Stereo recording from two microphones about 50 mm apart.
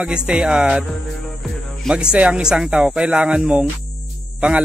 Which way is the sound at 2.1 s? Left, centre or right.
Right.